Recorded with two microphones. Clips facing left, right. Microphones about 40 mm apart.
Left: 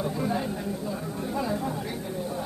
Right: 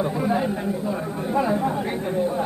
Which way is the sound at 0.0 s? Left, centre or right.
Right.